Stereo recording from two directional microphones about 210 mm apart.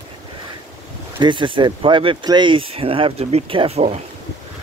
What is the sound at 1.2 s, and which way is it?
Speech, 25° right (ahead or behind).